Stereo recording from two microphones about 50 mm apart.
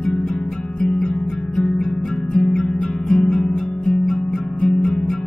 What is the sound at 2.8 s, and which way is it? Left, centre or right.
Music, centre.